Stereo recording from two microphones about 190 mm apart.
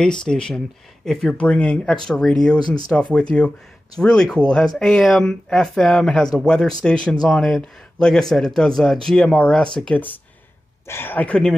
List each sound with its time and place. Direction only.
0.0 s speech: 5° left (ahead or behind)
2.6 s speech: 20° left (ahead or behind)
2.9 s speech: 5° left (ahead or behind)